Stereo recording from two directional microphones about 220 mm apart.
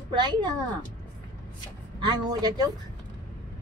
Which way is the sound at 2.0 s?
20° right (ahead or behind).